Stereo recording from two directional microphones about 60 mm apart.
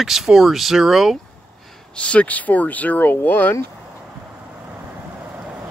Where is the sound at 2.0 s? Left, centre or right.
Centre.